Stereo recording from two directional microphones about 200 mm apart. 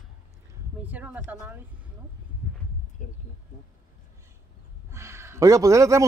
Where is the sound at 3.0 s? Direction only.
40° left (ahead or behind).